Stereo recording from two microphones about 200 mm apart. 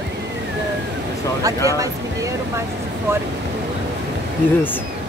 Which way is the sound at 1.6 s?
15° right (ahead or behind).